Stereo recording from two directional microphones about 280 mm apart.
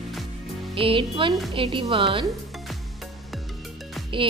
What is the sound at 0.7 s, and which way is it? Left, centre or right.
A woman's voice, centre.